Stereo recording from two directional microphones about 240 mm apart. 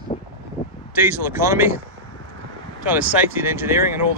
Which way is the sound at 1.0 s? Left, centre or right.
Centre.